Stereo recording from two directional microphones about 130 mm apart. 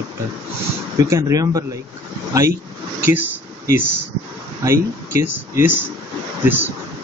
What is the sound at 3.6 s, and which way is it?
Speech, 15° right (ahead or behind).